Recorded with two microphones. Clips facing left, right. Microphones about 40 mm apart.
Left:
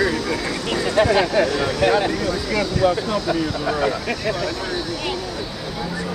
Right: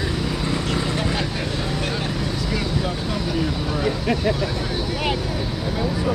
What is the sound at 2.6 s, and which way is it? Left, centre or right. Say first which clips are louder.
Speech: left 6 dB; centre.